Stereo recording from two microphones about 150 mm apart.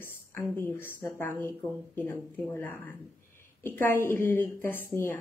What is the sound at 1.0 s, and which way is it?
A woman's voice, 15° left (ahead or behind).